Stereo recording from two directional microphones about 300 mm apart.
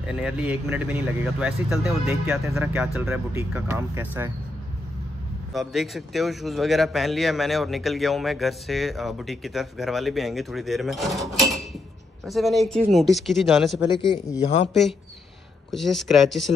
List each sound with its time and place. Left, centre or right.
0.0 s a man's voice: centre
5.5 s a man's voice: centre
14.0 s speech: centre
14.7 s a man's voice: centre